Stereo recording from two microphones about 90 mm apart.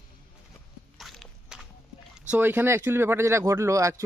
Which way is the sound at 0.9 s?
Centre (ahead or behind).